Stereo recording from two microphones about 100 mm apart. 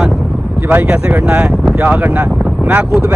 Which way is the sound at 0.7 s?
20° right (ahead or behind).